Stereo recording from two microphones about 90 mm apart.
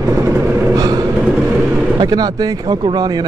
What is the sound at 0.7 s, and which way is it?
Speech, 45° right (ahead or behind).